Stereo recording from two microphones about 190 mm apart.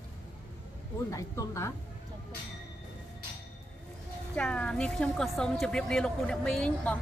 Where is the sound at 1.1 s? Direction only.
15° left (ahead or behind).